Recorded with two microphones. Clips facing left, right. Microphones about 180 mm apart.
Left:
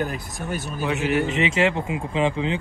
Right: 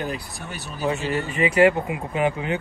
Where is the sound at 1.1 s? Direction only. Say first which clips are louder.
Left 2 dB; 90° left.